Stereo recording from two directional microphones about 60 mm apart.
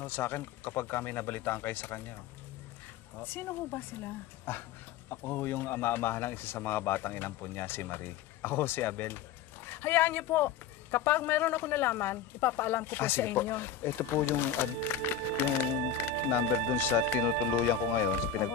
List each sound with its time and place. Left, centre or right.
0.0 s speech: left
3.2 s speech: left